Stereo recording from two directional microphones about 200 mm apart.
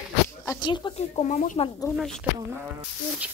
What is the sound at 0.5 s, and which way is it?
Speech, 20° left (ahead or behind).